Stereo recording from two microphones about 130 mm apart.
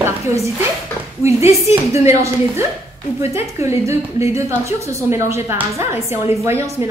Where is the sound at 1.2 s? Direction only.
20° right (ahead or behind).